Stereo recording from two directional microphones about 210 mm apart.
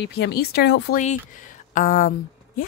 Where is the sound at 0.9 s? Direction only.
40° left (ahead or behind).